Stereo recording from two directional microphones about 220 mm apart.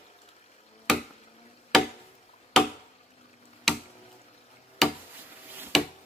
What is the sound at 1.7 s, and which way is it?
Chop, centre (ahead or behind).